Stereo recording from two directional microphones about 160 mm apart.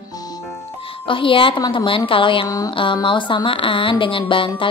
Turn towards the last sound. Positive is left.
turn(degrees=35)  # may be behind; listen again after turning